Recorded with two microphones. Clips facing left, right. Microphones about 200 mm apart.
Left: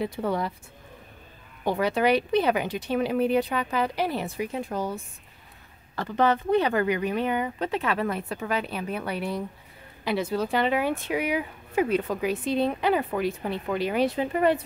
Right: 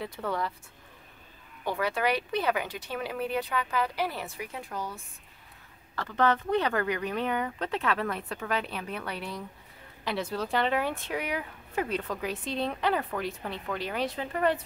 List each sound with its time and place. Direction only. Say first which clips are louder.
0.0 s speech: left 5 dB; 15° left (ahead or behind)
1.6 s speech: left 5 dB; 20° left (ahead or behind)
5.9 s speech: left 3 dB; 15° left (ahead or behind)